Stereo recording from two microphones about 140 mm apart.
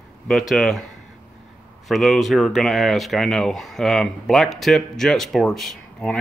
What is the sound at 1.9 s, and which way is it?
Speech, centre (ahead or behind).